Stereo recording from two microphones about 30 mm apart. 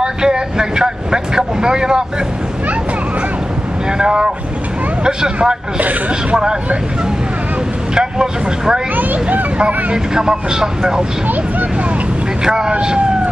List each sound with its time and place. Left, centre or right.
0.0 s speech: right
4.0 s speech: right
5.8 s speech: right
7.9 s speech: right
8.9 s speech: right
9.9 s speech: right
12.4 s speech: right